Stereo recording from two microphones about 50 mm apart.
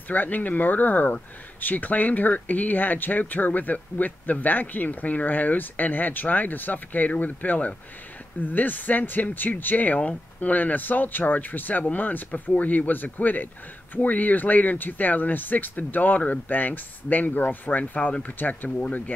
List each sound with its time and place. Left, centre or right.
0.1 s speech: left